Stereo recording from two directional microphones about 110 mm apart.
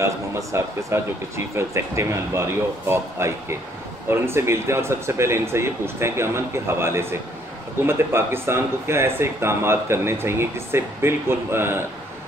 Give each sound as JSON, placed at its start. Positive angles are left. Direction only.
{"t": 0.0, "sound": "speech", "side_deg": -25}